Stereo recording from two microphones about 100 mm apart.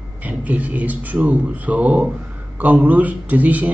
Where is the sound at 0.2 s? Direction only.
15° right (ahead or behind).